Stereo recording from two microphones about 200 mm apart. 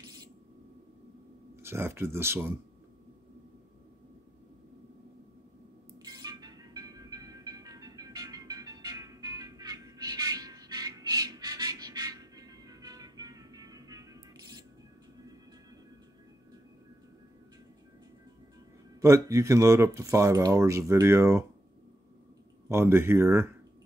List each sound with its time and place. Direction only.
1.6 s speech: 10° right (ahead or behind)
6.0 s train: 20° right (ahead or behind)
18.9 s speech: 15° right (ahead or behind)
22.7 s speech: 15° right (ahead or behind)